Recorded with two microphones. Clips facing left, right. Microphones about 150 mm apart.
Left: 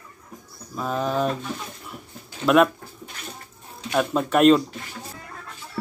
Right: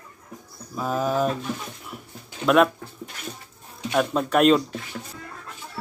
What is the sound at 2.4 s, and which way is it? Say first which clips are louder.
Speech: left 1 dB; centre (ahead or behind).